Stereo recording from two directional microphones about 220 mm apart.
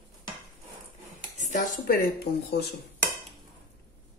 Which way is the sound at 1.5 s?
40° left (ahead or behind).